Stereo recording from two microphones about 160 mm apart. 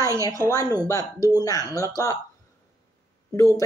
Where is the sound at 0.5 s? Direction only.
25° left (ahead or behind).